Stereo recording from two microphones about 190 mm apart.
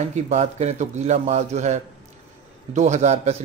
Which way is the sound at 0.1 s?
35° right (ahead or behind).